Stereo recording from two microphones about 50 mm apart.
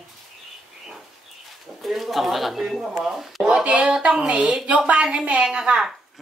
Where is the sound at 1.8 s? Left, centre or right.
Centre.